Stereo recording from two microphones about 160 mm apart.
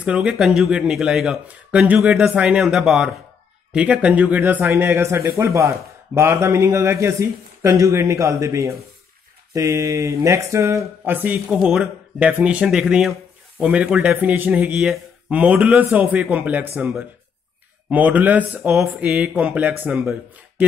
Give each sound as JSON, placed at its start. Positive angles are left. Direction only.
{"t": 0.0, "sound": "a man's voice", "side_deg": -5}